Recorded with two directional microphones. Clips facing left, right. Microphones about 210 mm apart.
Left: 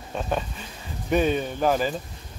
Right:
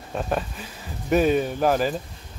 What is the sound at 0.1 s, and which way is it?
Speech, centre (ahead or behind).